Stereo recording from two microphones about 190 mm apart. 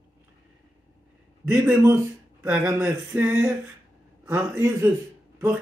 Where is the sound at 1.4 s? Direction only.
5° right (ahead or behind).